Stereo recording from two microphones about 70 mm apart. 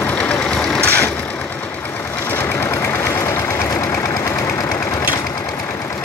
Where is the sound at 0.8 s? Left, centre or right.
Left.